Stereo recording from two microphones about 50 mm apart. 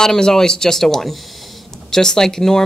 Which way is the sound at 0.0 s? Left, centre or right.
Centre.